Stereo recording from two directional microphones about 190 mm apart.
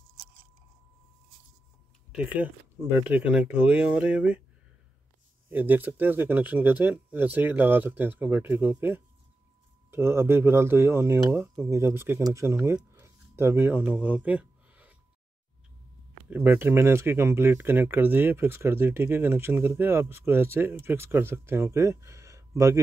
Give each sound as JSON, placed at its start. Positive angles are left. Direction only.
{"t": 2.1, "sound": "speech", "side_deg": -10}
{"t": 5.5, "sound": "speech", "side_deg": -10}
{"t": 16.3, "sound": "speech", "side_deg": -10}